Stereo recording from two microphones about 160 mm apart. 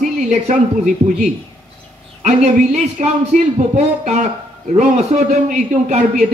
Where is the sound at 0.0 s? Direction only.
50° right (ahead or behind).